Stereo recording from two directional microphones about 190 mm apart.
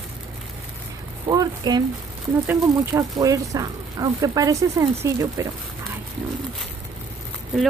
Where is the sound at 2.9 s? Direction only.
20° right (ahead or behind).